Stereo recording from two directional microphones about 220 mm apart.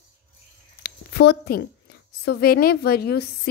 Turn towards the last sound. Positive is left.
turn(degrees=45)  # may be behind; listen again after turning